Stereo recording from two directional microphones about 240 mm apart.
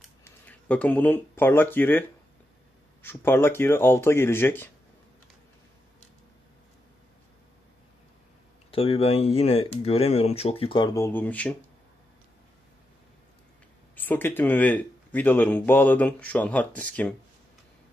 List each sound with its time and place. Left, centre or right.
0.2 s speech: centre
8.7 s speech: left; by 11.5 s centre
13.9 s speech: centre